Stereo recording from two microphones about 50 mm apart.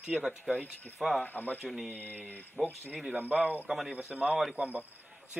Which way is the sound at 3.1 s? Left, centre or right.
Right.